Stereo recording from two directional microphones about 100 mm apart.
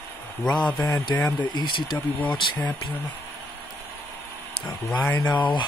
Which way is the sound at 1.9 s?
15° left (ahead or behind).